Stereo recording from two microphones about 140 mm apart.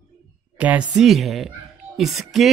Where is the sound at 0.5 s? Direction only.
10° right (ahead or behind).